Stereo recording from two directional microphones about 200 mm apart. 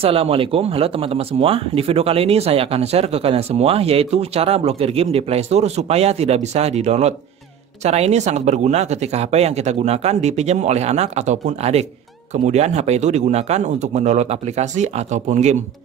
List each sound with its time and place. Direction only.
0.0 s speech: 30° right (ahead or behind)